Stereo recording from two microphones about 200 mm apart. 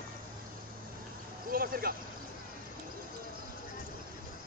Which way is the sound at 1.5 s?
45° right (ahead or behind).